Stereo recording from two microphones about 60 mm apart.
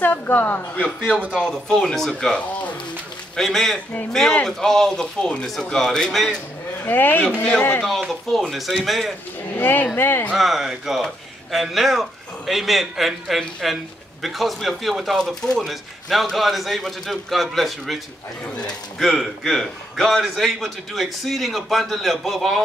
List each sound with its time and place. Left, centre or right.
0.0 s a woman's voice: left
1.2 s speech: right
1.7 s speech: centre
3.3 s a man's voice: centre
6.9 s a man's voice: left
8.3 s a man's voice: centre
9.6 s a man's voice: left
10.3 s a man's voice: centre
15.1 s a man's voice: centre
18.5 s speech: centre
18.9 s a man's voice: centre